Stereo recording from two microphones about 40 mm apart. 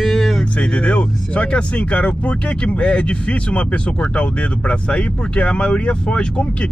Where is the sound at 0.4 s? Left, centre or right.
Left.